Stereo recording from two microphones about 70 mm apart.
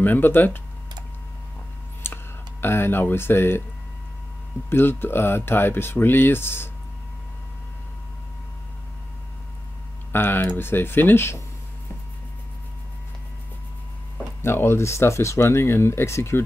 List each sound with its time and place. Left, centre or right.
0.0 s speech: left
2.0 s a sound: left
2.6 s speech: left
4.6 s speech: left
10.1 s speech: left
14.4 s speech: left